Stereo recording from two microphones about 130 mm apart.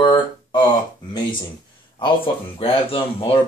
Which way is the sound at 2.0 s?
40° left (ahead or behind).